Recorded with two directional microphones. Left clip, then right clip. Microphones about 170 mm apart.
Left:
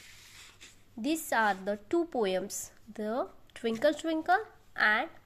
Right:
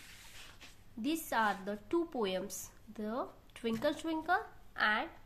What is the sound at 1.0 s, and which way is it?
A woman's voice, 30° left (ahead or behind).